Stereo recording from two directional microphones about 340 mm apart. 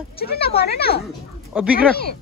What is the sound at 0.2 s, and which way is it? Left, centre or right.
Speech, left.